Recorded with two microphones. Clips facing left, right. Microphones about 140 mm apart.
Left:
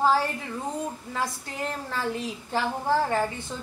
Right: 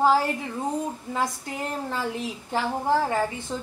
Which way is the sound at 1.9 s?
15° right (ahead or behind).